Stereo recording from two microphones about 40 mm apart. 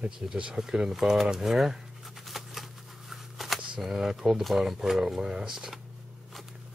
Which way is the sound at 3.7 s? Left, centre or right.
Centre.